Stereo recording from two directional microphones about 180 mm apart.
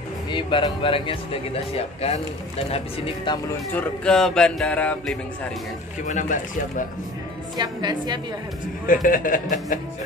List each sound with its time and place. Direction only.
0.3 s speech: 25° left (ahead or behind)
3.3 s speech: 25° left (ahead or behind)
3.7 s speech: 5° left (ahead or behind)
6.0 s speech: 40° left (ahead or behind)
7.5 s a woman's voice: 25° right (ahead or behind)
8.8 s speech: 50° left (ahead or behind)